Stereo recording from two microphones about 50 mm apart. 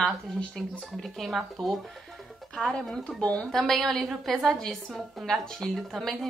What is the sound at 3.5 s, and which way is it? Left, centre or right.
A woman's voice, centre.